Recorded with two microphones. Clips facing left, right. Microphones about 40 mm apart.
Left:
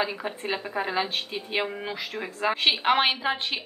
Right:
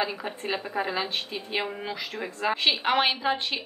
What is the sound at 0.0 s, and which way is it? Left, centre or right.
Speech, centre.